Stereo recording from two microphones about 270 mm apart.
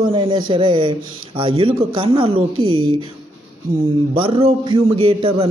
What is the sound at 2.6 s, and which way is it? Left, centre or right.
Speech, right.